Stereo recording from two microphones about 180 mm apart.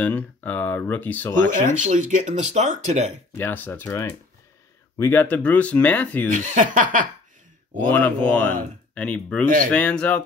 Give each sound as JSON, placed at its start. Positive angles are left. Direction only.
{"t": 0.0, "sound": "speech", "side_deg": 10}
{"t": 1.5, "sound": "speech", "side_deg": -45}
{"t": 3.3, "sound": "speech", "side_deg": 10}
{"t": 6.4, "sound": "speech", "side_deg": -45}
{"t": 7.9, "sound": "speech", "side_deg": 10}